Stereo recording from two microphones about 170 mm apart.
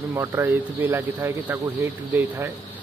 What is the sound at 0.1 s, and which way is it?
Speech, 15° right (ahead or behind).